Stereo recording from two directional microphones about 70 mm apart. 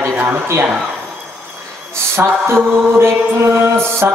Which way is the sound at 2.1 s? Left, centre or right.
Right.